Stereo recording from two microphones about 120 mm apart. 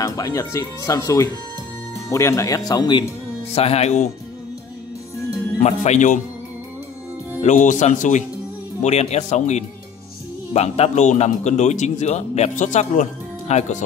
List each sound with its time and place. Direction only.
0.0 s speech: 30° left (ahead or behind)
3.5 s speech: 60° left (ahead or behind)
5.6 s speech: 80° left
7.4 s speech: 90° left
8.8 s a man's voice: 70° left (ahead or behind)